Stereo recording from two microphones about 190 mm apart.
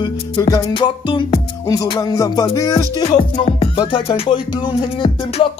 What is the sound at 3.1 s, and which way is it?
Music, 30° left (ahead or behind).